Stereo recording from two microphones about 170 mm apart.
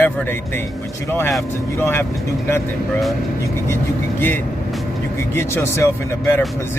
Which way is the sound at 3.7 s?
15° left (ahead or behind).